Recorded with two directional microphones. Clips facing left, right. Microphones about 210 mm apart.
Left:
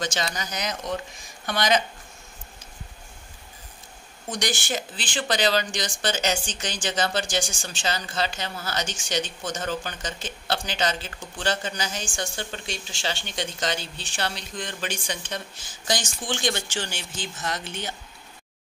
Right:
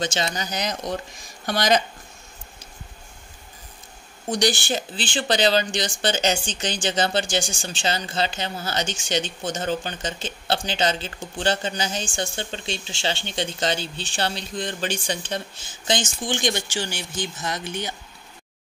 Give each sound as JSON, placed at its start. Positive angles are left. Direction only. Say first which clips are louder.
{"t": 0.0, "sound": "speech", "louder": "right 3 dB", "side_deg": -25}
{"t": 4.3, "sound": "speech", "louder": "right 6 dB", "side_deg": -30}